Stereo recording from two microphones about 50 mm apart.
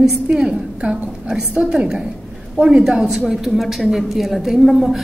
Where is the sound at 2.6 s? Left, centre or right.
Centre.